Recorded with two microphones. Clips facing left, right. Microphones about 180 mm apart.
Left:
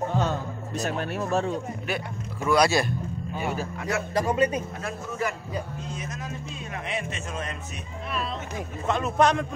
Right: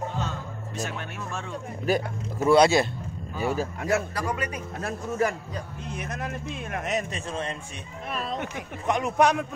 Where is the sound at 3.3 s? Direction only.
35° right (ahead or behind).